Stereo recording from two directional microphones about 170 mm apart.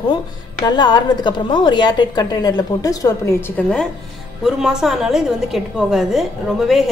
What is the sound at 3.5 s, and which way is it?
A woman's voice, 5° left (ahead or behind).